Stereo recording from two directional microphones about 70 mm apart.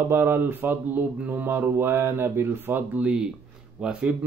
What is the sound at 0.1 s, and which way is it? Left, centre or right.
Speech, right.